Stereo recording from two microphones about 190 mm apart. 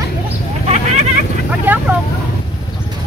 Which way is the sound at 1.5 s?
10° right (ahead or behind).